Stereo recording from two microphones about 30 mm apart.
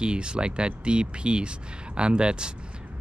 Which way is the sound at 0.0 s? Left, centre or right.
Right.